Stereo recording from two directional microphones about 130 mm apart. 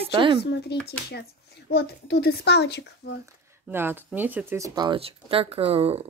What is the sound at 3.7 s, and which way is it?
Speech, 15° right (ahead or behind).